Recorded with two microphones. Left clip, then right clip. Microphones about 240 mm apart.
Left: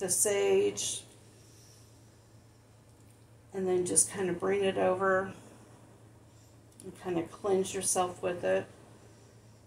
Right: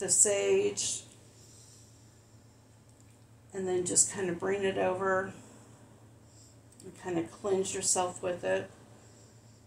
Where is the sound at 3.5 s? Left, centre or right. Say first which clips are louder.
Left 1 dB; centre.